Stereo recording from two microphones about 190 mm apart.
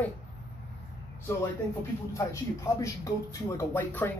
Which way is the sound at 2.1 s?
15° left (ahead or behind).